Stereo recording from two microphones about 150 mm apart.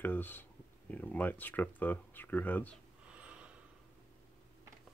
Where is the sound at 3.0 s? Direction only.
10° right (ahead or behind).